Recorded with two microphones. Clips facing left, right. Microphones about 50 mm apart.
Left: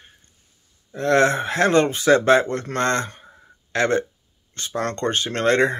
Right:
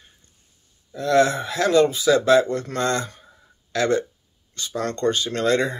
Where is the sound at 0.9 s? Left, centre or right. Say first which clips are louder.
Left 1 dB; left.